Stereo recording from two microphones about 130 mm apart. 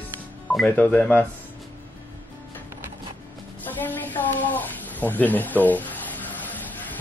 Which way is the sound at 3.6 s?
15° left (ahead or behind).